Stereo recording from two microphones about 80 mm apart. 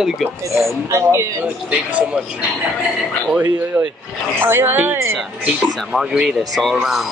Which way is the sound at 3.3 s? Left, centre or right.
Centre.